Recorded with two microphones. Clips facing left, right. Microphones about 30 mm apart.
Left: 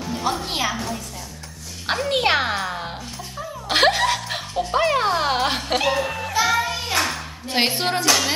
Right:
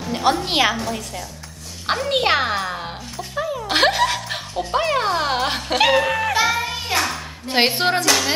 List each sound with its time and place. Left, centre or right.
0.1 s a woman's voice: right
1.9 s a child's voice: centre
5.9 s speech: right
6.4 s music: centre
7.4 s speech: centre